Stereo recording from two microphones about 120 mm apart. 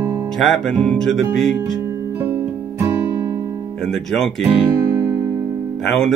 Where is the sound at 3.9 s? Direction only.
5° left (ahead or behind).